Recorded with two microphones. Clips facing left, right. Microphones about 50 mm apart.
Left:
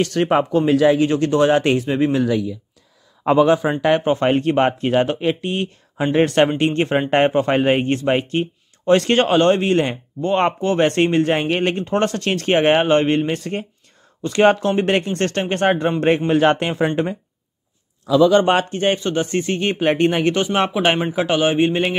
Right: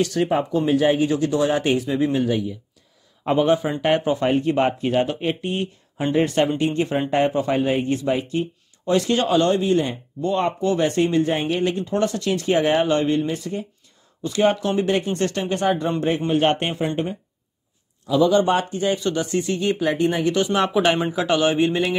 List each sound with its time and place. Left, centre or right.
0.0 s speech: left
0.3 s speech: left
1.8 s speech: left
3.3 s speech: left
4.2 s speech: left
6.1 s speech: left
10.6 s speech: left
14.6 s speech: left
14.9 s speech: left
16.3 s speech: left
18.0 s speech: left
18.9 s speech: left
20.3 s a man's voice: left